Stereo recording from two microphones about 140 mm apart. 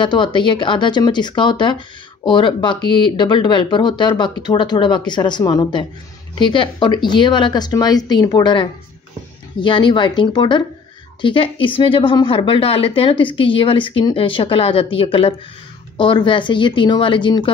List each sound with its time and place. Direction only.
0.0 s a woman's voice: 35° left (ahead or behind)